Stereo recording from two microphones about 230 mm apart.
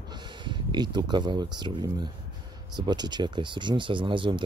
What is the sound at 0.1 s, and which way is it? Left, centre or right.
Speech, centre.